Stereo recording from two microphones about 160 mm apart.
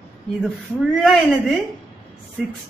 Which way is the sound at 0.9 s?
Centre (ahead or behind).